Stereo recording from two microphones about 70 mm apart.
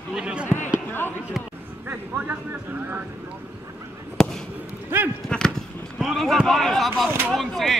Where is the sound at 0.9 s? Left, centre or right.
Left.